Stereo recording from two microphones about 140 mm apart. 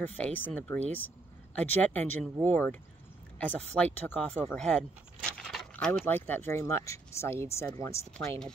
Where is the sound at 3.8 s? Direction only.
10° left (ahead or behind).